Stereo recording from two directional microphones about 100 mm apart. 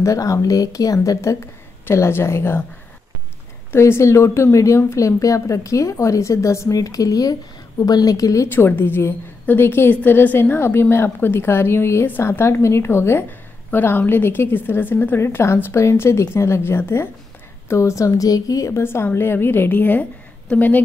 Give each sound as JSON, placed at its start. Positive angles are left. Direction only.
{"t": 0.0, "sound": "a woman's voice", "side_deg": 30}
{"t": 3.7, "sound": "a woman's voice", "side_deg": 25}
{"t": 8.5, "sound": "a woman's voice", "side_deg": 20}